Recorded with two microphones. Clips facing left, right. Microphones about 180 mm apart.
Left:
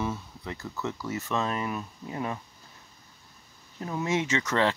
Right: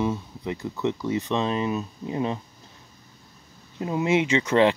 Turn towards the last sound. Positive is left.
turn(degrees=-15)  # may be behind; listen again after turning